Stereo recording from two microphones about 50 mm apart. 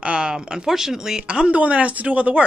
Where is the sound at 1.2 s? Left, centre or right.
Right.